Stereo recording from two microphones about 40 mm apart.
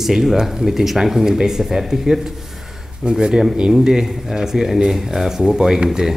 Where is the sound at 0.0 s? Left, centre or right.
Centre.